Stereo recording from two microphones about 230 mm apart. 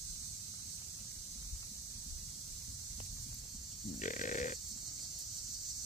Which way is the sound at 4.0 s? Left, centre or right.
Left.